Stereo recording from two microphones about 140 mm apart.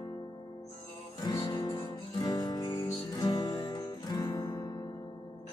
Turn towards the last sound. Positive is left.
turn(degrees=30)  # may be behind; listen again after turning